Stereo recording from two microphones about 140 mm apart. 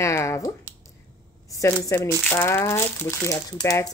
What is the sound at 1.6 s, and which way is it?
Speech, 20° left (ahead or behind).